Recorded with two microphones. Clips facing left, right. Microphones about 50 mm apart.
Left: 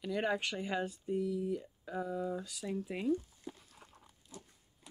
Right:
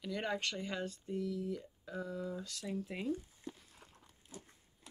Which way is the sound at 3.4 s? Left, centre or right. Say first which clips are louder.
Left 1 dB; centre.